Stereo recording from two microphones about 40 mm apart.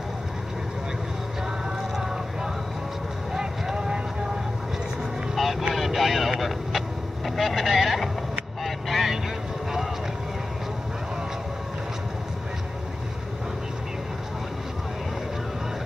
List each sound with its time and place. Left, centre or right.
3.3 s vehicle: centre
5.3 s vehicle: centre
7.2 s speech: centre
8.6 s vehicle: centre